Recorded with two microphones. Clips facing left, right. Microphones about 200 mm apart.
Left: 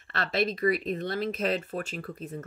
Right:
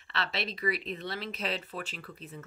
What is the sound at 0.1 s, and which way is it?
Speech, 50° left (ahead or behind).